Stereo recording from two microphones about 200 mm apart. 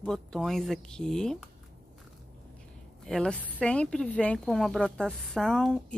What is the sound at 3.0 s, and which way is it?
Speech, centre (ahead or behind).